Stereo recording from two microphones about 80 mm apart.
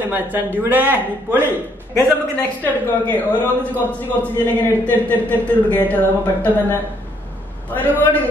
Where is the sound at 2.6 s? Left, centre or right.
Left.